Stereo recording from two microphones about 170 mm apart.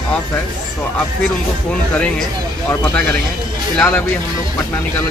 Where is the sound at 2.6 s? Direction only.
10° left (ahead or behind).